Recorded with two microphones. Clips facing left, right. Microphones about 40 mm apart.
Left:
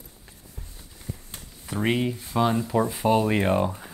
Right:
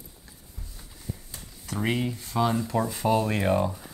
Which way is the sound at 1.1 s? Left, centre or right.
Left.